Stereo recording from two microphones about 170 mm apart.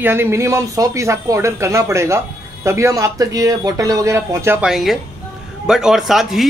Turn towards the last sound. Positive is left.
turn(degrees=0)  # may be behind; listen again after turning